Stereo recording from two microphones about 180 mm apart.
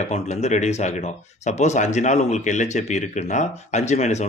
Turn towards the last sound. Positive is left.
turn(degrees=40)  # may be behind; listen again after turning